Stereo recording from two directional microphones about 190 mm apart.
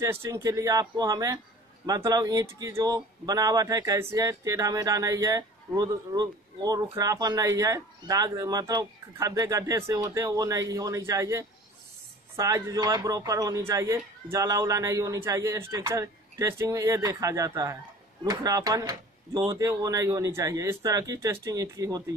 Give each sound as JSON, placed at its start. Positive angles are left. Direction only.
{"t": 0.0, "sound": "speech", "side_deg": -15}